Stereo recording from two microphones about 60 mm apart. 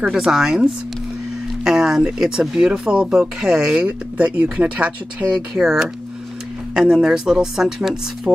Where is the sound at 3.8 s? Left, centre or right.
Right.